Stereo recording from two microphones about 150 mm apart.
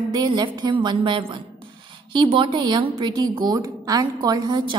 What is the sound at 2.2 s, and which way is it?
A woman's voice, 35° right (ahead or behind).